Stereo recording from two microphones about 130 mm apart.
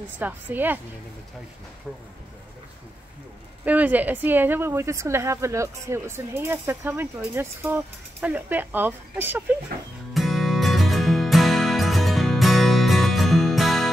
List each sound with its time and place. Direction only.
0.2 s speech: 15° right (ahead or behind)
3.6 s speech: 10° right (ahead or behind)
10.1 s music: centre (ahead or behind)